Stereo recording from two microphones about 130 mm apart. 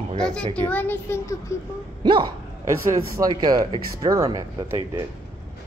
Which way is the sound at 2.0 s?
35° right (ahead or behind).